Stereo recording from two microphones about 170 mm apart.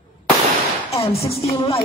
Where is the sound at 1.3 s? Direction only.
35° left (ahead or behind).